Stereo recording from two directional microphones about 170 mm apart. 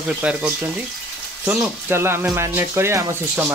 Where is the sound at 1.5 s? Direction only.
10° right (ahead or behind).